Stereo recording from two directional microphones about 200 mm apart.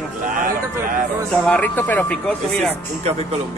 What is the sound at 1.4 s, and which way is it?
Speech, 5° left (ahead or behind).